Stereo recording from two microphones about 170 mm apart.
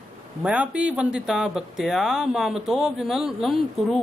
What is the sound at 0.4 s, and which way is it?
Speech, 5° right (ahead or behind).